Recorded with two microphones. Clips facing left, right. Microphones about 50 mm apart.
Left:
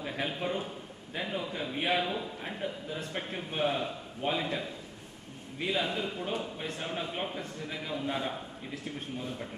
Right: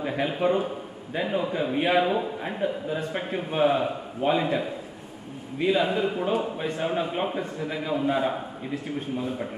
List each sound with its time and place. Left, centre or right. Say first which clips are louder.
0.3 s a man's voice: right 10 dB; centre
8.7 s a man's voice: right 9 dB; centre